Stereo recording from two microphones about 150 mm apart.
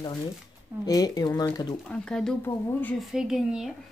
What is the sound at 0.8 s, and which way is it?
Speech, 25° left (ahead or behind).